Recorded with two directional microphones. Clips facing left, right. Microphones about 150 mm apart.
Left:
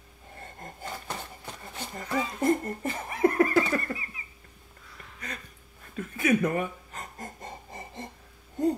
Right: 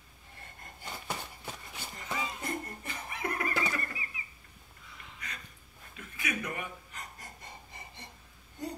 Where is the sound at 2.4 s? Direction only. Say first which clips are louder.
Left 12 dB; 45° left (ahead or behind).